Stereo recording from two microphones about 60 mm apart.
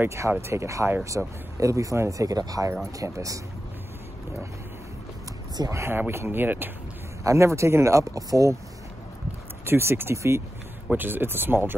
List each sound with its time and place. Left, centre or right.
0.4 s speech: right
3.0 s speech: right
5.7 s speech: right
5.9 s speech: right
7.2 s speech: right
9.7 s speech: right
10.9 s speech: right